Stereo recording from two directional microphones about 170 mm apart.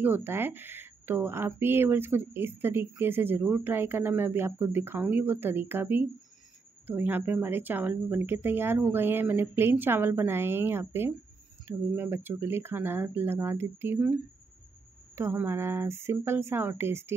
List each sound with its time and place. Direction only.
0.0 s speech: 10° right (ahead or behind)